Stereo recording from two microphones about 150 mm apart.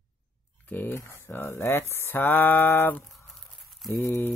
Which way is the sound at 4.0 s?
20° left (ahead or behind).